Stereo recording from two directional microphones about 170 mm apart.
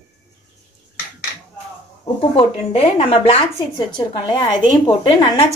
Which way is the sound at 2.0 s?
35° left (ahead or behind).